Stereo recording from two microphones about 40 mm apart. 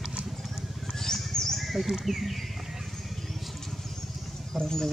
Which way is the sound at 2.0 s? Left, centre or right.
Centre.